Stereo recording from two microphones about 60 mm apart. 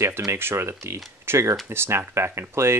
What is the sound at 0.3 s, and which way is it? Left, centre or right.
Speech, right.